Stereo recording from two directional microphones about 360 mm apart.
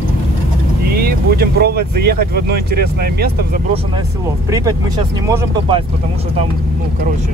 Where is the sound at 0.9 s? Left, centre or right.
Right.